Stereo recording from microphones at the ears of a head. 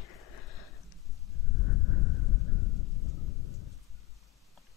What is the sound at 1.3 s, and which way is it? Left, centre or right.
Thunder, left.